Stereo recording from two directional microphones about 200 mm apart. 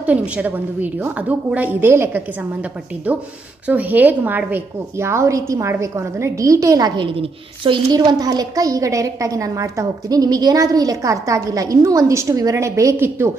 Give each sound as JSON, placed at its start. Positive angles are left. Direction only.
{"t": 0.0, "sound": "a woman's voice", "side_deg": -5}